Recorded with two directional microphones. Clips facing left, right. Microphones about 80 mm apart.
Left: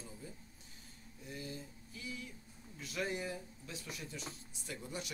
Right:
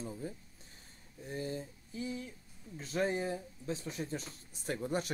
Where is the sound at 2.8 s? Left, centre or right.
Right.